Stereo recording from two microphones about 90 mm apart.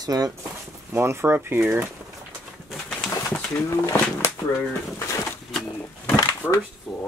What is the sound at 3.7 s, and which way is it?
Speech, 30° left (ahead or behind).